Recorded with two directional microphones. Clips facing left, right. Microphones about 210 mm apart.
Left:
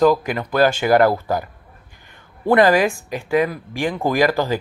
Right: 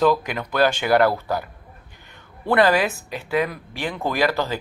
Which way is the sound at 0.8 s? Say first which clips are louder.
Left 3 dB; 45° left (ahead or behind).